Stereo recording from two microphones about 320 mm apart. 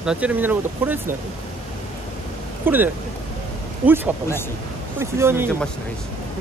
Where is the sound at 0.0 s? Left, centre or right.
Centre.